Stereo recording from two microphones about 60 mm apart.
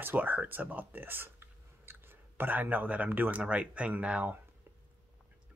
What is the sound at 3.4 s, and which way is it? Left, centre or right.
Speech, right.